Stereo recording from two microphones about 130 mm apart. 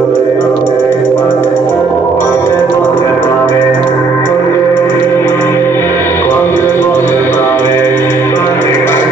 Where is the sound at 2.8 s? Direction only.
15° left (ahead or behind).